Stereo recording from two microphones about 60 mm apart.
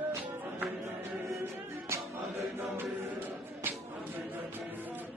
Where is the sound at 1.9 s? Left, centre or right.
Right.